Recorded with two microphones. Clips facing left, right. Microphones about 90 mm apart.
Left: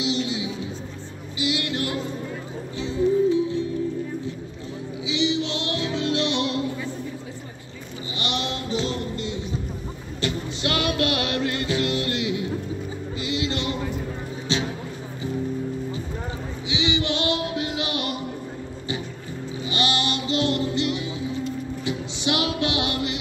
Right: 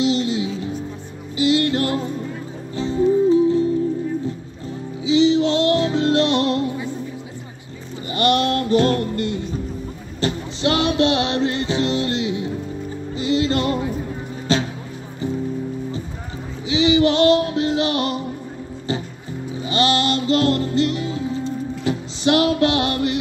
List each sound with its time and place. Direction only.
0.0 s music: 40° right (ahead or behind)
5.0 s music: 40° right (ahead or behind)
8.1 s music: 50° right (ahead or behind)
10.2 s music: 30° right (ahead or behind)
16.6 s music: 35° right (ahead or behind)
19.6 s music: 35° right (ahead or behind)